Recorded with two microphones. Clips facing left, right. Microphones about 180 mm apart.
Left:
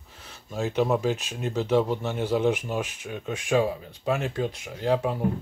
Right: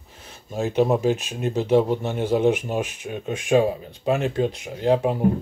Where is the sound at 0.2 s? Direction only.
15° right (ahead or behind).